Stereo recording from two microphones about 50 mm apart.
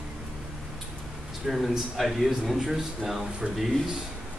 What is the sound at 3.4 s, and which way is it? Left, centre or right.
Speech, right.